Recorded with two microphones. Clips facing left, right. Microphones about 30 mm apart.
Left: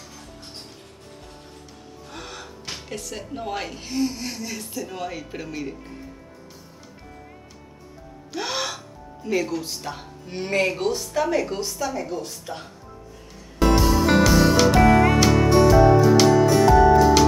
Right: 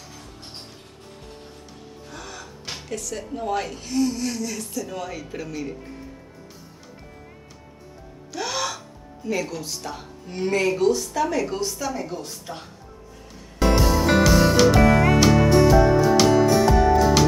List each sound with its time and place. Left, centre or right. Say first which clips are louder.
2.1 s gasp: left 1 dB; left
2.9 s a woman's voice: right 4 dB; centre
5.8 s music: right 1 dB; centre
8.3 s gasp: even; centre
10.5 s speech: right 2 dB; left
11.1 s a woman's voice: left 1 dB; centre
13.6 s music: left 1 dB; centre